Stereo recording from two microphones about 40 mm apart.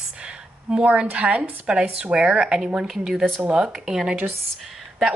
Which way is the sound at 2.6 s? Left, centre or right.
Centre.